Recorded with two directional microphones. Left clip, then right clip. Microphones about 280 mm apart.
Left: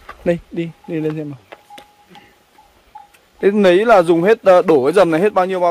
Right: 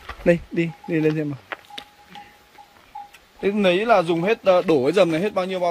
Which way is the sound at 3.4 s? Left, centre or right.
Centre.